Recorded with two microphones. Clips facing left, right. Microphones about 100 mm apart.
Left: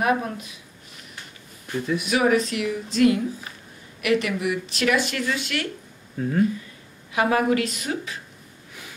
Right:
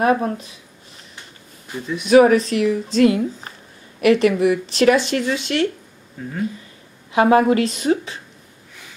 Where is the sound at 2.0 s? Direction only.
40° right (ahead or behind).